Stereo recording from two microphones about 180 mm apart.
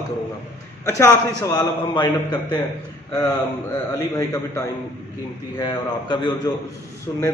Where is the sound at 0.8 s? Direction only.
15° left (ahead or behind).